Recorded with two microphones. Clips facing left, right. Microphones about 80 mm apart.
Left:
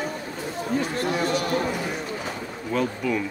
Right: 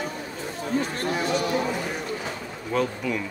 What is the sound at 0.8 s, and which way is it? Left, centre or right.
Speech, right.